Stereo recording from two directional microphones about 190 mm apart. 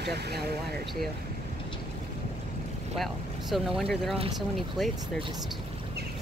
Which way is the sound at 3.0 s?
Centre (ahead or behind).